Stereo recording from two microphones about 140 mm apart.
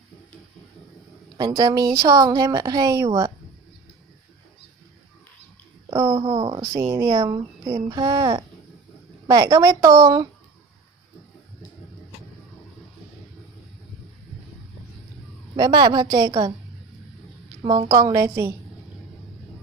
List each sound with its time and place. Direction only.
1.4 s speech: 30° right (ahead or behind)
3.1 s a woman's voice: 35° right (ahead or behind)
5.9 s a woman's voice: 25° right (ahead or behind)
6.6 s speech: 20° right (ahead or behind)
15.5 s a woman's voice: 30° right (ahead or behind)
17.6 s speech: 25° right (ahead or behind)